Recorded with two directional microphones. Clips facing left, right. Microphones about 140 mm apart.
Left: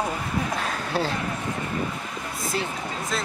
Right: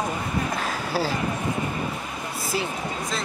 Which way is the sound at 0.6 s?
5° right (ahead or behind).